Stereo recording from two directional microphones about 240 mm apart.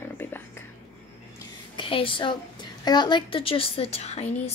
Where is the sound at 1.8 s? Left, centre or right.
Left.